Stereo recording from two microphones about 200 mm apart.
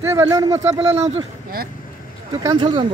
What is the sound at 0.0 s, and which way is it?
Speech, 15° right (ahead or behind).